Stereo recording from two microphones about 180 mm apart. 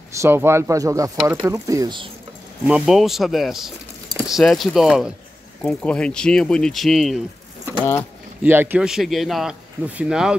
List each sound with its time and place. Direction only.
0.1 s speech: 15° right (ahead or behind)
2.6 s speech: 5° right (ahead or behind)
8.4 s speech: 10° right (ahead or behind)